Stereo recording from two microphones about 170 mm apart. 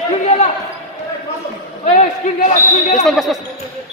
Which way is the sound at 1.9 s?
45° left (ahead or behind).